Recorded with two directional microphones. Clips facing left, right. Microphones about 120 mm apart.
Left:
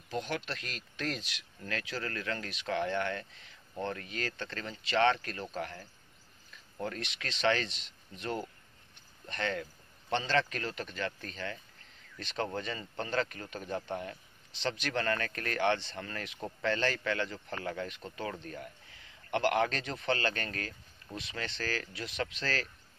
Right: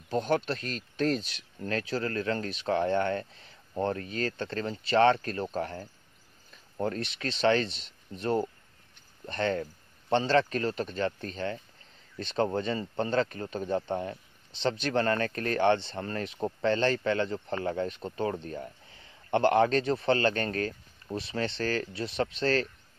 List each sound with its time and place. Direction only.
0.1 s speech: 40° right (ahead or behind)